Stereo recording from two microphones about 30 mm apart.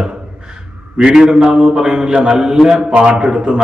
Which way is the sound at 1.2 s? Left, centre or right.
Right.